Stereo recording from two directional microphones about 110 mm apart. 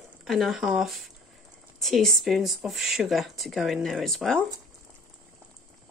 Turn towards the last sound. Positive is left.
turn(degrees=5)  # may be behind; listen again after turning